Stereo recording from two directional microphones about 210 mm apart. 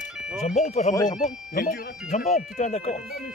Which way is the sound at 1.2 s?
35° left (ahead or behind).